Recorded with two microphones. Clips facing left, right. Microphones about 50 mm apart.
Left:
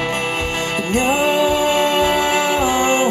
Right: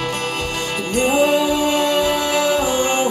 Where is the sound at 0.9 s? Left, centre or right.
Left.